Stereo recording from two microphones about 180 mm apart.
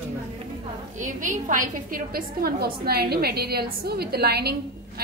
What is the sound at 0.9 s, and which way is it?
A woman's voice, 45° right (ahead or behind).